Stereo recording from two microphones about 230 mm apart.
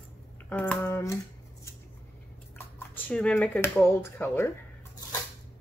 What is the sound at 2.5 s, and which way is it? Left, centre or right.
Speech, centre.